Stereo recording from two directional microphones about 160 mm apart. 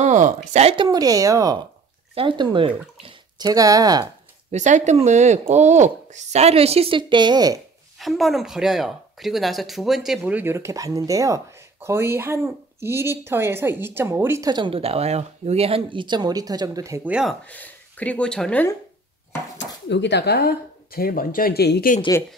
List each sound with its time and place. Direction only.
0.0 s speech: 50° right (ahead or behind)
0.8 s speech: 20° right (ahead or behind)
2.1 s speech: 30° right (ahead or behind)
4.5 s speech: 50° right (ahead or behind); by 7.5 s 25° right (ahead or behind)
8.0 s speech: centre (ahead or behind); by 17.1 s 20° right (ahead or behind)
17.1 s speech: 5° right (ahead or behind)
17.5 s speech: 10° left (ahead or behind)
19.6 s speech: 90° left